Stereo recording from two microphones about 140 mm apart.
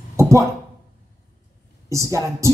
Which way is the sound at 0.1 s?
20° right (ahead or behind).